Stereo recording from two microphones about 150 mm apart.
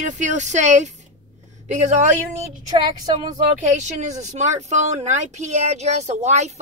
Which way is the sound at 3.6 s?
50° right (ahead or behind).